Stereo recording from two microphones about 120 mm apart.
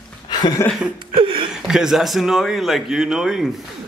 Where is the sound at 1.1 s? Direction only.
45° right (ahead or behind).